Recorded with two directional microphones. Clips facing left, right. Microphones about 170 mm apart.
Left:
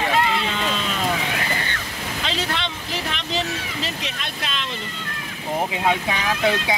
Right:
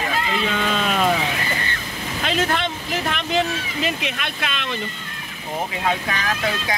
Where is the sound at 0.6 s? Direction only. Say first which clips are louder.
Right 4 dB; 60° right (ahead or behind).